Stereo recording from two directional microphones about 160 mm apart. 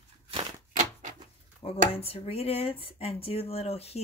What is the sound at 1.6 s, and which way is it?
Speech, 35° left (ahead or behind).